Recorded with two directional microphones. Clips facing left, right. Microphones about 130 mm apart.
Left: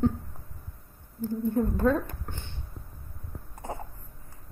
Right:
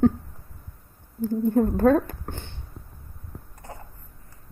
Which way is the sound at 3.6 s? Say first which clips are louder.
Left 6 dB; 20° left (ahead or behind).